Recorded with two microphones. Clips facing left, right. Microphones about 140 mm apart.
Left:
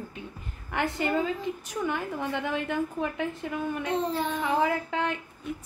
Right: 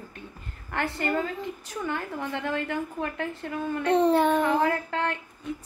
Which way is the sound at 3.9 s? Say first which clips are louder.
Right 11 dB; 70° right (ahead or behind).